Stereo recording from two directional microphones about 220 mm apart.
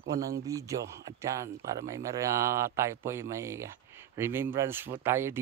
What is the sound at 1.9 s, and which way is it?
Speech, 15° right (ahead or behind).